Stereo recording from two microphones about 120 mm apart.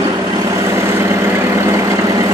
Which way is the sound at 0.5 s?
20° right (ahead or behind).